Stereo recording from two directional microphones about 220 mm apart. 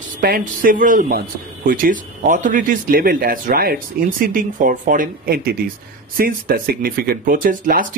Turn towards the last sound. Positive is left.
turn(degrees=-40)  # may be behind; listen again after turning